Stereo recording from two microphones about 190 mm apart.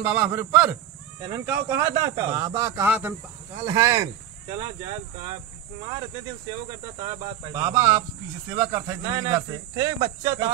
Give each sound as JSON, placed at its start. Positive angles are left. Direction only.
{"t": 0.0, "sound": "speech", "side_deg": -5}
{"t": 6.7, "sound": "speech", "side_deg": -20}